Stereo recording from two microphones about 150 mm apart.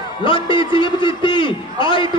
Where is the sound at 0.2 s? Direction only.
35° left (ahead or behind).